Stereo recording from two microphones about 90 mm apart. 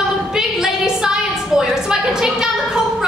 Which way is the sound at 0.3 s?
5° right (ahead or behind).